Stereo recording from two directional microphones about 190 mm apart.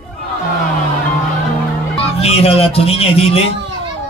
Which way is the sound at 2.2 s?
30° left (ahead or behind).